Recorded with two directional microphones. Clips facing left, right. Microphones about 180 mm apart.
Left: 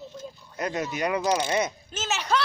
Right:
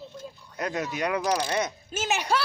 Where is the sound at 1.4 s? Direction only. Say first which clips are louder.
Left 2 dB; 5° left (ahead or behind).